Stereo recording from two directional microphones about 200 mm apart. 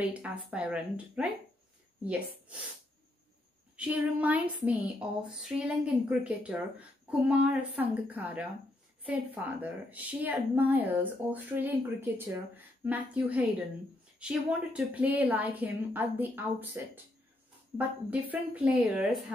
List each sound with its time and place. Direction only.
0.0 s speech: 5° right (ahead or behind)
3.7 s speech: 5° right (ahead or behind)
18.3 s speech: 10° right (ahead or behind)